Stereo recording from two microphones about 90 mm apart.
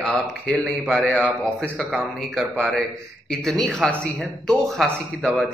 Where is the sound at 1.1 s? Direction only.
20° left (ahead or behind).